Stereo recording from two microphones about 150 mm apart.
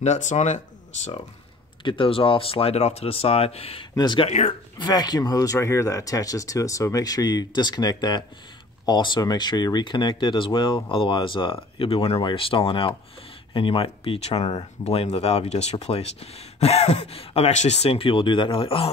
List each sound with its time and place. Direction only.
0.0 s speech: 50° left (ahead or behind)
1.9 s speech: 35° left (ahead or behind)
3.9 s speech: 30° left (ahead or behind)
4.3 s speech: 50° left (ahead or behind)
4.7 s speech: 30° left (ahead or behind)